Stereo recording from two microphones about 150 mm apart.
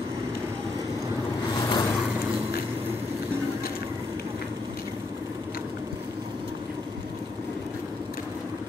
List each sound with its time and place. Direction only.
1.6 s vehicle: 25° left (ahead or behind)